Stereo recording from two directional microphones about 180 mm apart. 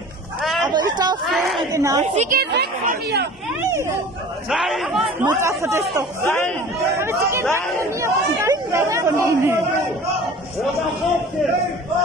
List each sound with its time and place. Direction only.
0.4 s a sound: centre (ahead or behind)
0.7 s a sound: 25° right (ahead or behind)
1.2 s a sound: centre (ahead or behind)
1.7 s a woman's voice: 20° right (ahead or behind)
2.0 s speech: 45° right (ahead or behind); by 3.3 s 65° right (ahead or behind)
4.5 s a man's voice: centre (ahead or behind)
5.3 s speech: 15° right (ahead or behind)
6.2 s speech: 10° left (ahead or behind)
7.0 s speech: 15° right (ahead or behind)
8.0 s chatter: 15° right (ahead or behind)